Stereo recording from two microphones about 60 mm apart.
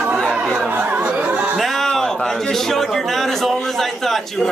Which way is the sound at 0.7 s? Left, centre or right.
Right.